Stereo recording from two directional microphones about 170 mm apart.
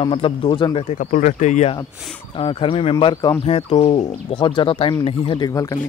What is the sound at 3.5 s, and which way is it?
Speech, 35° left (ahead or behind).